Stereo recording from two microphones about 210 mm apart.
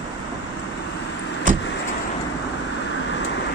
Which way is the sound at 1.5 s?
40° right (ahead or behind).